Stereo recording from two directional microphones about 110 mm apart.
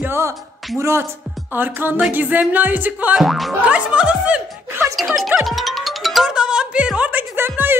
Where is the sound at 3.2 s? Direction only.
Centre (ahead or behind).